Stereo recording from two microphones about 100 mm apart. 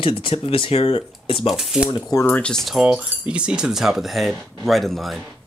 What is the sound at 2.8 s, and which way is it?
Speech, 10° right (ahead or behind).